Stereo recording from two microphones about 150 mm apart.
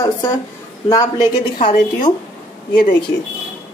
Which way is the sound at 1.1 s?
60° left (ahead or behind).